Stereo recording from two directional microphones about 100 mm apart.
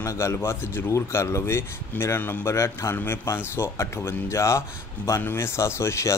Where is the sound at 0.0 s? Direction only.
30° left (ahead or behind).